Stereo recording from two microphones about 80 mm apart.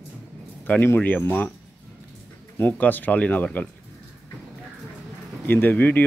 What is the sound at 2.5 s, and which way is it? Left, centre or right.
Speech, left.